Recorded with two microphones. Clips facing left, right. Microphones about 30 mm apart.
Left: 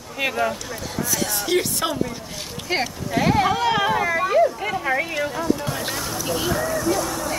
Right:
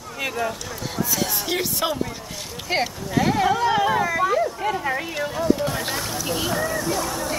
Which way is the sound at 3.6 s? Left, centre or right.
Left.